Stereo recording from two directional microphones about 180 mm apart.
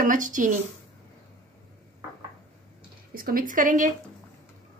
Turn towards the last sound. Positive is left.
turn(degrees=-45)  # may be behind; listen again after turning